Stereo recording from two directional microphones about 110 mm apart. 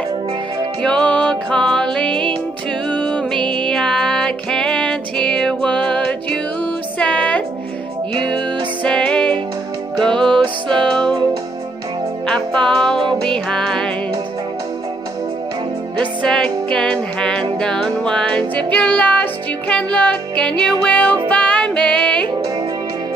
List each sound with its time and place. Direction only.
0.8 s music: 10° left (ahead or behind)
8.8 s music: 5° left (ahead or behind)
10.4 s music: 50° right (ahead or behind)
12.6 s music: 5° left (ahead or behind)
13.0 s music: 45° right (ahead or behind)
13.3 s music: 5° left (ahead or behind)
16.2 s music: 5° left (ahead or behind)